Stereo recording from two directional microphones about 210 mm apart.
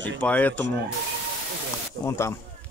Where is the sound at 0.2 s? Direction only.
5° left (ahead or behind).